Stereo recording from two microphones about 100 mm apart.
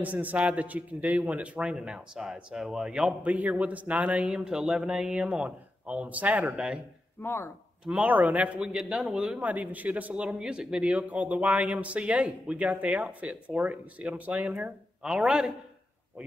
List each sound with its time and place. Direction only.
0.0 s a man's voice: 15° right (ahead or behind)
7.2 s speech: 25° left (ahead or behind)
7.8 s a man's voice: 10° right (ahead or behind)